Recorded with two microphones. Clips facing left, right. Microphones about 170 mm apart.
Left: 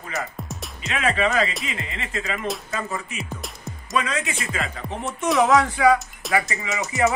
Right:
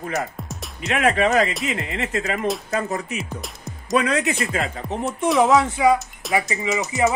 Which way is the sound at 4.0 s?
65° right (ahead or behind).